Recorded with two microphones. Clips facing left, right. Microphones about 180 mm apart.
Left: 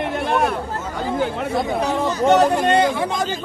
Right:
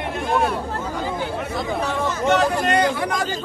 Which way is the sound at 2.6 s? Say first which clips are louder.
Left 3 dB; 25° left (ahead or behind).